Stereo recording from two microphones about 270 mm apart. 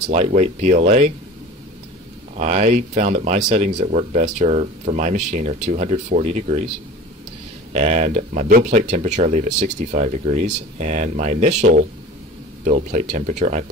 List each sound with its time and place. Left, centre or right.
0.1 s speech: right
2.3 s speech: right
7.7 s speech: right